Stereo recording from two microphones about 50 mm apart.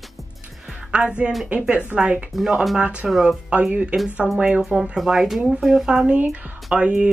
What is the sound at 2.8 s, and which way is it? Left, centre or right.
Speech, right.